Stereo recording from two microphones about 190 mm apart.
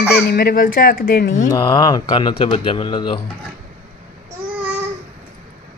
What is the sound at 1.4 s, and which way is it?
A woman's voice, 20° left (ahead or behind).